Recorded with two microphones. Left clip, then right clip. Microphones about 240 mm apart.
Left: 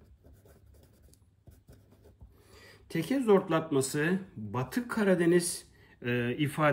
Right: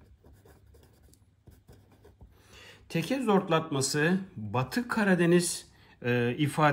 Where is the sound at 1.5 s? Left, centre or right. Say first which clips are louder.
Right 2 dB; centre.